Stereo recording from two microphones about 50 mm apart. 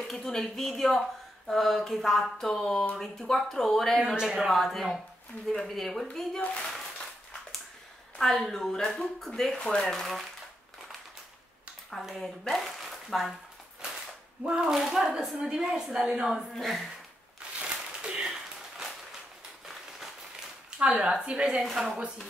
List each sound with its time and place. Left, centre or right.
0.1 s speech: centre
4.1 s a woman's voice: centre
4.5 s speech: centre
8.2 s speech: centre
11.9 s speech: centre
14.5 s a woman's voice: centre
16.3 s speech: centre
17.6 s a sound: right
20.8 s a woman's voice: right
21.5 s speech: centre